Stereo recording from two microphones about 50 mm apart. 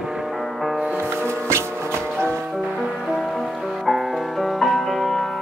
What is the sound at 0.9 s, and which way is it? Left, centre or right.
Music, right.